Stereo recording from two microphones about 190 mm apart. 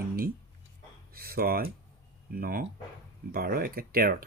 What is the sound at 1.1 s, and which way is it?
Speech, 50° right (ahead or behind).